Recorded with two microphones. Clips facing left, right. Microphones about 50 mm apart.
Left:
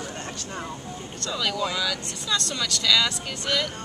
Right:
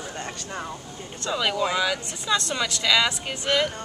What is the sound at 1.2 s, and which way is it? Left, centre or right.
Speech, right.